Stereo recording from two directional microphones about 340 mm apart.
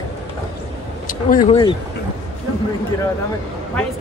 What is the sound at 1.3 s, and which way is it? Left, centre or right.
Speech, centre.